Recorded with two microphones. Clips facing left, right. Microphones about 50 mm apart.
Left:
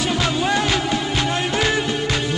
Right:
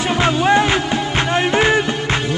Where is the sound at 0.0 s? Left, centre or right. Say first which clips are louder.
Right 4 dB; right.